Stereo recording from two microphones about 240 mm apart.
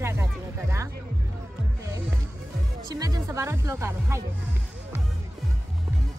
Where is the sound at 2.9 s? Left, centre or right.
Centre.